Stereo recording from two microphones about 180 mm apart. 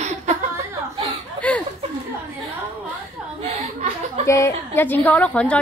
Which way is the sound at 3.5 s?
40° right (ahead or behind).